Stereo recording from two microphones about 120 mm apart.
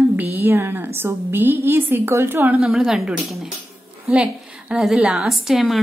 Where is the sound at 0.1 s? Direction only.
15° right (ahead or behind).